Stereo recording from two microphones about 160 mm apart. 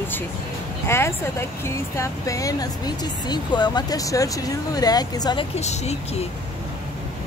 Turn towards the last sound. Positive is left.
turn(degrees=45)  # may be behind; listen again after turning